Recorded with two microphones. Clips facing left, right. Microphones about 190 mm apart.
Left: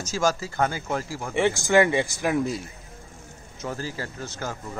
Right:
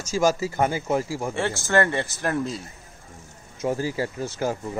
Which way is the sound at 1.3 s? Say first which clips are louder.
Left 4 dB; 15° left (ahead or behind).